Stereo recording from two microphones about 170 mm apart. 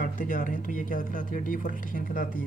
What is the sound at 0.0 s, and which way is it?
Speech, 50° left (ahead or behind).